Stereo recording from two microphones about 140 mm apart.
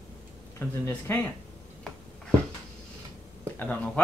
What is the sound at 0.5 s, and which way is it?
Speech, 15° left (ahead or behind).